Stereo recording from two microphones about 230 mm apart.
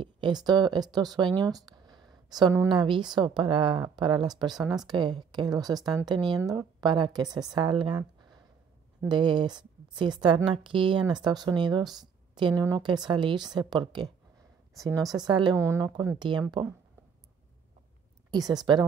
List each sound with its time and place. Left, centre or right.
0.0 s a woman's voice: centre
5.8 s speech: centre
6.0 s a woman's voice: centre
18.3 s speech: centre